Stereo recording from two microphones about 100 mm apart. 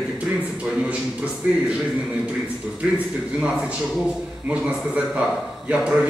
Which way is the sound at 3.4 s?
10° right (ahead or behind).